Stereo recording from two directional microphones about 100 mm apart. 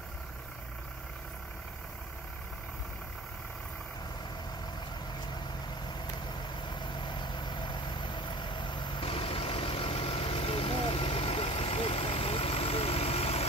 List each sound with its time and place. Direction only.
6.2 s vehicle: 50° left (ahead or behind); by 13.5 s 90° left